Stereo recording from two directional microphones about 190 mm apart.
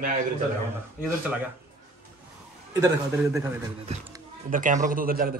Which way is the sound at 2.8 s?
15° right (ahead or behind).